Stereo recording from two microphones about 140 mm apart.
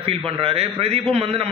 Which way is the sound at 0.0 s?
45° right (ahead or behind).